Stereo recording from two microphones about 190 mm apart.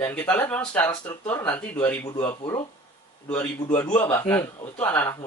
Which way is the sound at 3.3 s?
10° left (ahead or behind).